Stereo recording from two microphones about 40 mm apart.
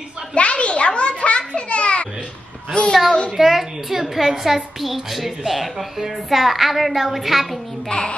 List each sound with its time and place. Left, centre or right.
0.3 s a sound: left
3.1 s a child's voice: left
3.3 s a woman's voice: centre
7.9 s a child's voice: left